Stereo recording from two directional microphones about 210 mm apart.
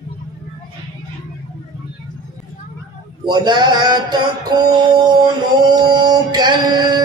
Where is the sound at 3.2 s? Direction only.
20° right (ahead or behind).